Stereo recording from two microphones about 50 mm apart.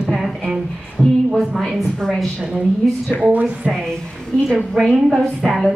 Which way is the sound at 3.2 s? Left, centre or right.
Right.